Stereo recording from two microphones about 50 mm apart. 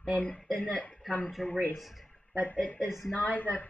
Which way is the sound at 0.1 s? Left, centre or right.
Left.